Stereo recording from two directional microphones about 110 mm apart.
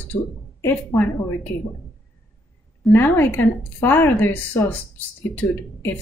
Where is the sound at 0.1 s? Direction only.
20° left (ahead or behind).